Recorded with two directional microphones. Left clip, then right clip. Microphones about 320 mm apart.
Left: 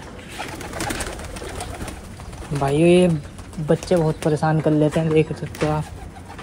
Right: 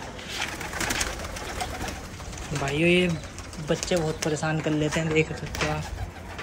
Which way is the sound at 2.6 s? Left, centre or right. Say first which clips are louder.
Left 7 dB; centre.